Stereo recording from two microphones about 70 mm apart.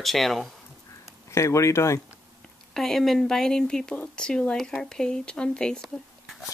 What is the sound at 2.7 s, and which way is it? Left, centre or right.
Speech, centre.